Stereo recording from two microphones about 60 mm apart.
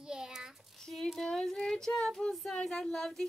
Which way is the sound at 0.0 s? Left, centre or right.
Centre.